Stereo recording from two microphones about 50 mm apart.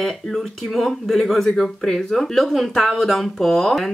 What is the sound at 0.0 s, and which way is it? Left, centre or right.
Speech, centre.